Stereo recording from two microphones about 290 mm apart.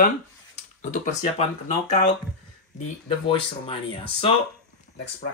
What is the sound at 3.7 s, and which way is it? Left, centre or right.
Speech, centre.